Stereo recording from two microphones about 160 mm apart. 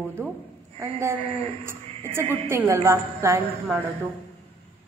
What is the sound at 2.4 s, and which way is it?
Speech, 15° right (ahead or behind).